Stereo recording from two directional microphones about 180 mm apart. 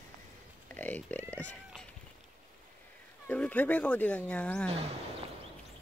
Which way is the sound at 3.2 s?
10° left (ahead or behind).